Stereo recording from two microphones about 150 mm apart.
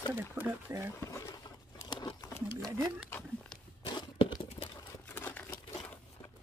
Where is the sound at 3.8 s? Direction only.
30° left (ahead or behind).